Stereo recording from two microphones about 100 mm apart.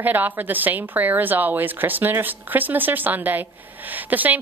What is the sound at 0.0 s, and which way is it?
A woman's voice, 20° right (ahead or behind).